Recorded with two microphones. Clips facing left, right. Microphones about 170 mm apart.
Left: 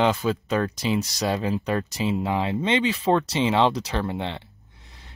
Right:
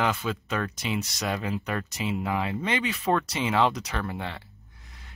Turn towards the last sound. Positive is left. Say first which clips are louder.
# left 2 dB
turn(degrees=25)  # may be behind; listen again after turning